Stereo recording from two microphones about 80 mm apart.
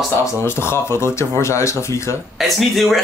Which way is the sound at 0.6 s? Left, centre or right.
Left.